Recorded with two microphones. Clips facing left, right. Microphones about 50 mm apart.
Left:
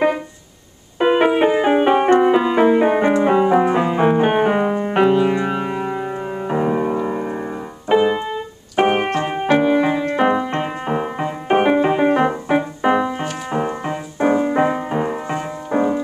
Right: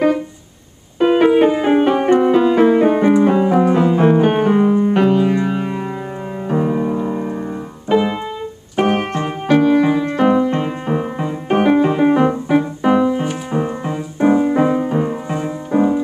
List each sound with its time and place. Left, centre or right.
0.9 s music: centre
7.9 s keyboard: centre
9.1 s music: left